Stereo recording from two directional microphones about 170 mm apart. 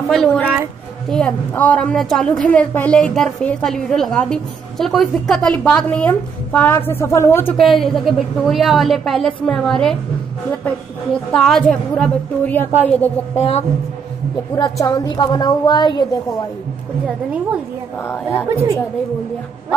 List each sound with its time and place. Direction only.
0.1 s a woman's voice: 5° left (ahead or behind)
7.5 s a woman's voice: centre (ahead or behind)
11.3 s a woman's voice: 5° left (ahead or behind)
13.4 s a woman's voice: 40° left (ahead or behind)
14.5 s a woman's voice: 25° left (ahead or behind)